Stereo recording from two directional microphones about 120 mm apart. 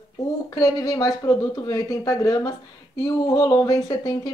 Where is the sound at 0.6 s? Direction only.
30° left (ahead or behind).